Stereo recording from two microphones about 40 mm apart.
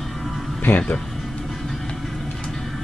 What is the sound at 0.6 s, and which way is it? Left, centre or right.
Speech, left.